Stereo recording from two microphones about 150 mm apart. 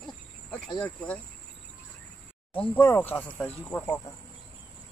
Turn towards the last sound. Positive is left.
turn(degrees=15)  # may be behind; listen again after turning